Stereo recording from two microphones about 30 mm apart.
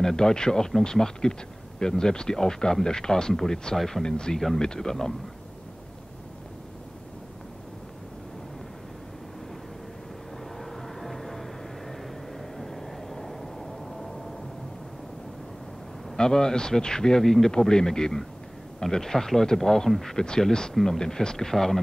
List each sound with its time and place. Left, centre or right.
0.0 s speech: left
3.7 s speech: centre
4.0 s speech: left
10.6 s vehicle: centre
16.2 s speech: left
17.2 s speech: centre
17.5 s speech: left